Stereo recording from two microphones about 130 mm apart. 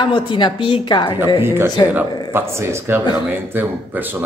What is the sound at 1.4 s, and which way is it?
Speech, 20° right (ahead or behind).